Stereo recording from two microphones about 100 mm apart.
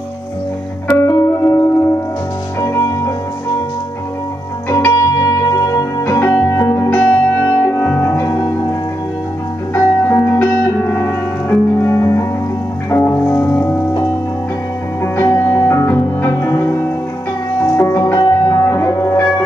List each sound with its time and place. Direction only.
0.8 s music: 30° left (ahead or behind)
4.6 s music: 25° left (ahead or behind)
6.0 s music: 25° left (ahead or behind)
6.9 s music: 15° left (ahead or behind)
9.8 s music: 20° left (ahead or behind)
15.1 s music: 25° left (ahead or behind)